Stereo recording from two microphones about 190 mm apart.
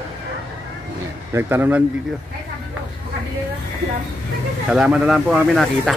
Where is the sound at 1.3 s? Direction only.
10° right (ahead or behind).